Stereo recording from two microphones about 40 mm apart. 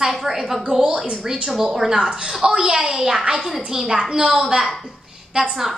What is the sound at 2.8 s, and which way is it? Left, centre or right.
A woman's voice, centre.